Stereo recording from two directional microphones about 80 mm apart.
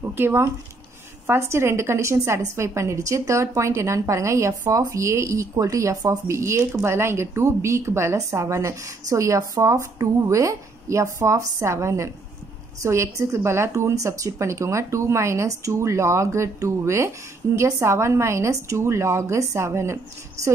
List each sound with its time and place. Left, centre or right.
0.0 s a woman's voice: right